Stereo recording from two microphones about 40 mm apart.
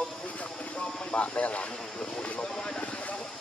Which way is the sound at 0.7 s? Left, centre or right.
Centre.